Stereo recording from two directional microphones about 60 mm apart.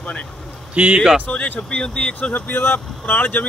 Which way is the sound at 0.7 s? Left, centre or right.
Right.